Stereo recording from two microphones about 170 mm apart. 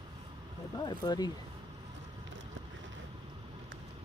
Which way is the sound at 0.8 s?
25° left (ahead or behind).